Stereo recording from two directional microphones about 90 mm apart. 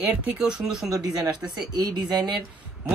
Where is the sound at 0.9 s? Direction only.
45° right (ahead or behind).